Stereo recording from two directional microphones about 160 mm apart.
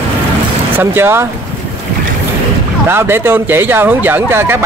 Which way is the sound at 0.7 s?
15° right (ahead or behind).